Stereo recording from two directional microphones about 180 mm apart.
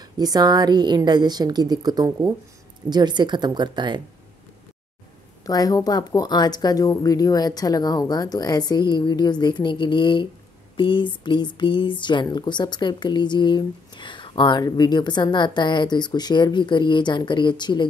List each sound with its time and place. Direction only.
0.2 s a woman's voice: 20° right (ahead or behind)
5.5 s speech: 20° left (ahead or behind)